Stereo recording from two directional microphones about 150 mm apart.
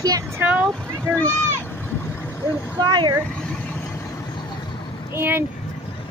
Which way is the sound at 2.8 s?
30° right (ahead or behind).